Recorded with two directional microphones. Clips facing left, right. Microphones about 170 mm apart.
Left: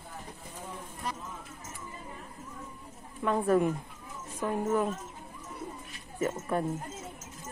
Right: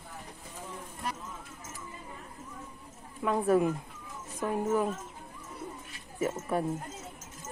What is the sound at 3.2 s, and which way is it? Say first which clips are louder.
Speech: even; 10° right (ahead or behind).